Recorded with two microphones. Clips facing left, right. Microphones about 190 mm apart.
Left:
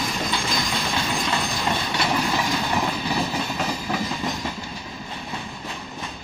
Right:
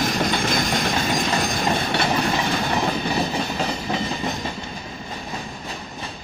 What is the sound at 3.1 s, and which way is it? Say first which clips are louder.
Train: right 2 dB; 25° right (ahead or behind).